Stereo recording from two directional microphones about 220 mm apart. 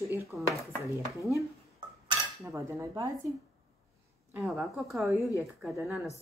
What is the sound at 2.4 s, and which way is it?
Speech, 15° right (ahead or behind).